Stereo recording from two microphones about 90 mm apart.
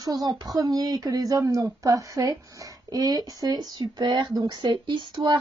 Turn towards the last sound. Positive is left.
turn(degrees=-55)  # may be behind; listen again after turning